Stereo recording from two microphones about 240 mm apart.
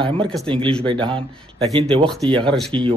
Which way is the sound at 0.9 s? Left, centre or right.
Right.